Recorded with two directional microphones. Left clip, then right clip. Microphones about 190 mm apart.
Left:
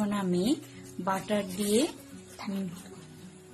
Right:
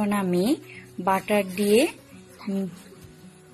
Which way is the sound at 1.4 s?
25° right (ahead or behind).